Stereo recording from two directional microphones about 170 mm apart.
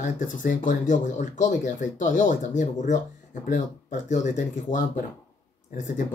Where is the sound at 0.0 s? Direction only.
50° left (ahead or behind).